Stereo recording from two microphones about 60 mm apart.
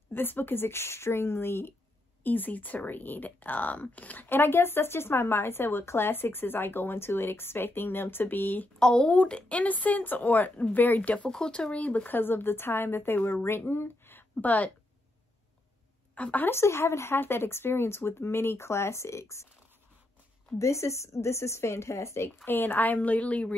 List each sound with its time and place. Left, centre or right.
0.1 s speech: left
2.2 s speech: left
4.3 s speech: left
8.7 s speech: centre
11.2 s speech: centre; by 14.2 s left
14.3 s a woman's voice: left
16.2 s speech: left
16.4 s speech: left
20.5 s speech: left